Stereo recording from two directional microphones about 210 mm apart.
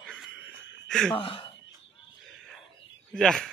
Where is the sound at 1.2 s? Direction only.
25° left (ahead or behind).